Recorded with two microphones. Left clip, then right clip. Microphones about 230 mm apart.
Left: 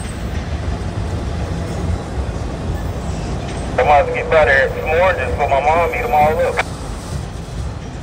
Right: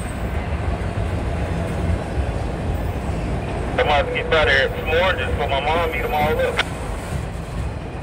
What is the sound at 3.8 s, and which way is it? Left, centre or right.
Vehicle, left.